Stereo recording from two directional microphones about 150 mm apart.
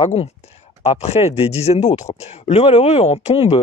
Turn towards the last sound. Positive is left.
turn(degrees=45)  # may be behind; listen again after turning